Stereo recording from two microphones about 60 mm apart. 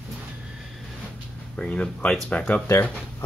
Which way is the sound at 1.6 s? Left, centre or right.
Centre.